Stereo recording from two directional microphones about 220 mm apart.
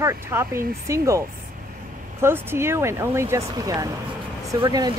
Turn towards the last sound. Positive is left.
turn(degrees=-15)  # may be behind; listen again after turning